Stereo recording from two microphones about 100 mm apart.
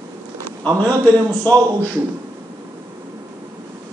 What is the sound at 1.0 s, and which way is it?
Speech, 20° left (ahead or behind).